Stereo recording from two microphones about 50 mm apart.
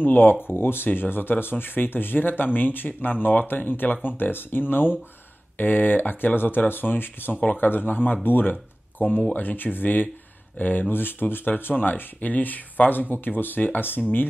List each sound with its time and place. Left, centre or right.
0.0 s speech: left